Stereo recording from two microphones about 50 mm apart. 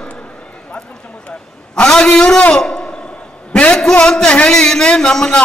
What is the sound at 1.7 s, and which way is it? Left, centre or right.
A man's voice, left.